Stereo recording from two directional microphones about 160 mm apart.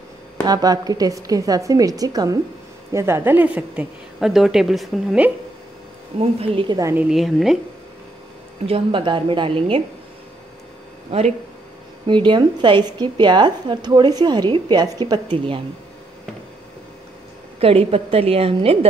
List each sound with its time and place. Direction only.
0.5 s a woman's voice: 25° right (ahead or behind); by 5.3 s 5° right (ahead or behind)
6.1 s a woman's voice: 35° right (ahead or behind)
6.9 s a woman's voice: 5° right (ahead or behind)
8.6 s a woman's voice: 35° right (ahead or behind)
11.1 s a woman's voice: 40° right (ahead or behind)
12.1 s speech: 30° right (ahead or behind)
17.6 s a woman's voice: 35° right (ahead or behind)